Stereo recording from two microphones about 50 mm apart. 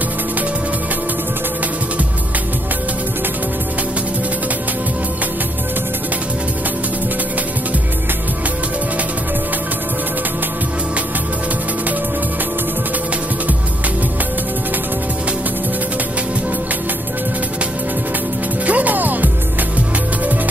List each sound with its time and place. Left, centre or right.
18.7 s music: right